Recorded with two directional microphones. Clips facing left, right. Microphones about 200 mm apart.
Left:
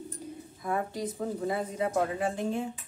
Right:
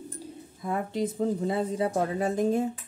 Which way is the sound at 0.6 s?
25° right (ahead or behind).